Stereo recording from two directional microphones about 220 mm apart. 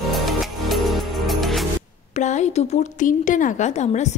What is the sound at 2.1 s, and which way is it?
Speech, 30° left (ahead or behind).